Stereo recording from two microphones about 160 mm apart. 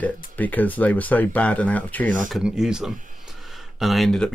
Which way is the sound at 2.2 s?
5° right (ahead or behind).